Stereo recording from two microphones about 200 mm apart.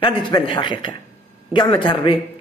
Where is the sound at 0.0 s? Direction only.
25° left (ahead or behind).